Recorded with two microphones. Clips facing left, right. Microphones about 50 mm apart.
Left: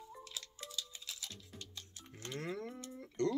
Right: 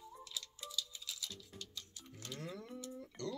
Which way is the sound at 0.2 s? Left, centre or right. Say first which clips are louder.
Right 3 dB; left.